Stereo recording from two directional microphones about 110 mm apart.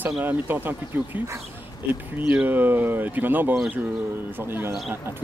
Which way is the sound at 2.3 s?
15° right (ahead or behind).